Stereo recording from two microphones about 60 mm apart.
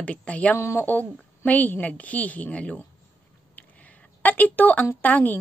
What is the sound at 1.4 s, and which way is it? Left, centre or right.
A woman's voice, left.